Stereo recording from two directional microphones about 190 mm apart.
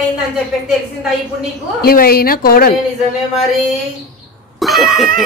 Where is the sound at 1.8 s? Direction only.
55° left (ahead or behind).